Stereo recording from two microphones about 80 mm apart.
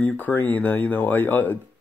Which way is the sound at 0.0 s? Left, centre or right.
Left.